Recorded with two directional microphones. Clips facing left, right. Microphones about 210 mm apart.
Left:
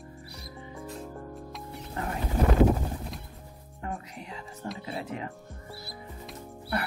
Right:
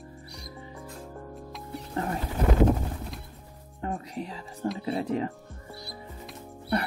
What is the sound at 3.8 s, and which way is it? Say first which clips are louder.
Speech: right 5 dB; 30° right (ahead or behind).